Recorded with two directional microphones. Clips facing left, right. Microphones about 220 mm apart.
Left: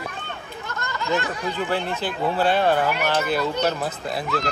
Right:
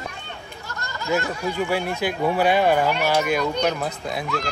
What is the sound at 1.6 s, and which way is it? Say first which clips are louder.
Speech: right 2 dB; 10° right (ahead or behind).